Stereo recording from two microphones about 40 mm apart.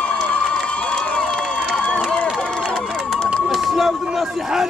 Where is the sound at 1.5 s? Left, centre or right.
Left.